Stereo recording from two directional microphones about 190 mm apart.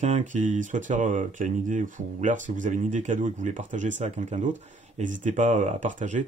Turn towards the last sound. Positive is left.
turn(degrees=-40)  # may be behind; listen again after turning